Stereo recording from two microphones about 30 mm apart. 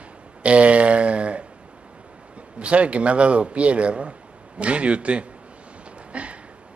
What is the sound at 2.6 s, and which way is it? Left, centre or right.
Speech, right.